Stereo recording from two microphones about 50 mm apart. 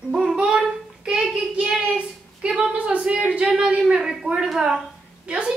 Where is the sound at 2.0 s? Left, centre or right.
Centre.